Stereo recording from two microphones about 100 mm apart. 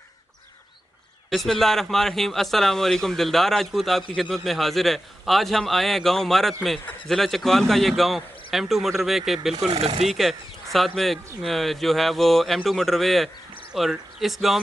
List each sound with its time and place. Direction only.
1.3 s speech: centre (ahead or behind)
9.7 s speech: 90° right
10.0 s speech: centre (ahead or behind)